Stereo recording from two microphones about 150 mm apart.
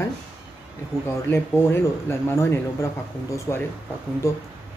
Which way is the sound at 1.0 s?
15° left (ahead or behind).